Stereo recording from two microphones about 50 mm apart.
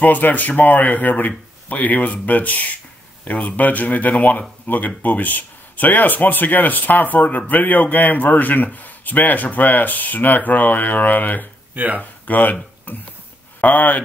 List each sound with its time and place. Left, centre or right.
0.0 s speech: left
11.7 s speech: right
12.0 s speech: left
12.9 s a sound: left
13.6 s speech: left